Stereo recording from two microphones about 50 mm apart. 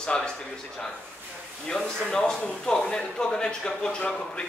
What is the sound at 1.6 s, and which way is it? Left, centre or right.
Speech, centre.